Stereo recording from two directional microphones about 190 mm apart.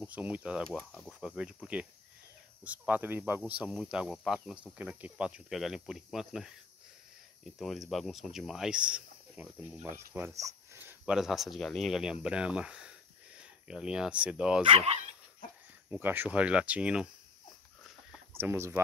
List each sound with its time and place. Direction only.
0.0 s speech: 5° right (ahead or behind)
14.6 s speech: 30° right (ahead or behind)
15.9 s speech: 10° right (ahead or behind)
18.3 s speech: 10° right (ahead or behind)